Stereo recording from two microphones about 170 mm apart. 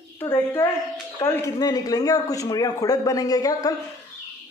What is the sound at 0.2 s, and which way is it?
A man's voice, 10° left (ahead or behind).